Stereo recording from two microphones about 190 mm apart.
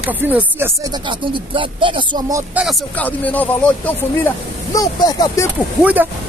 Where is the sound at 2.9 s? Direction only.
10° left (ahead or behind).